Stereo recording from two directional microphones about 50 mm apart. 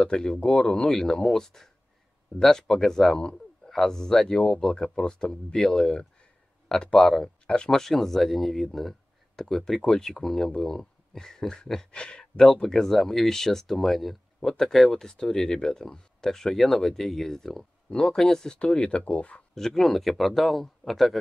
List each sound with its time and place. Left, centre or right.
0.0 s a man's voice: centre
18.6 s speech: left
19.5 s a man's voice: centre